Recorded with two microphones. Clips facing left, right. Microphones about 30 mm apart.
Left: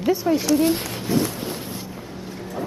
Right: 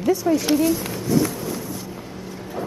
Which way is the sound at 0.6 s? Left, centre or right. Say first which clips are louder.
Even; left.